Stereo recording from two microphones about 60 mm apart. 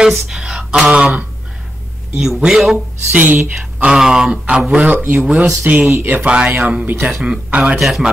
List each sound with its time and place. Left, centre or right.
0.4 s speech: centre
0.9 s speech: right
2.1 s a man's voice: centre
3.1 s speech: right
3.8 s speech: centre
4.8 s speech: right
5.2 s speech: centre
5.7 s speech: right
5.9 s speech: right
6.2 s speech: centre
6.9 s speech: right
7.2 s speech: centre
7.8 s a man's voice: centre